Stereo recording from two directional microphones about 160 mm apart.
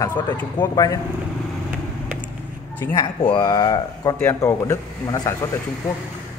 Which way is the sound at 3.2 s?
25° left (ahead or behind).